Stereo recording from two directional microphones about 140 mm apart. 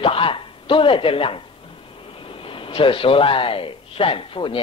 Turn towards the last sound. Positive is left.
turn(degrees=40)  # may be behind; listen again after turning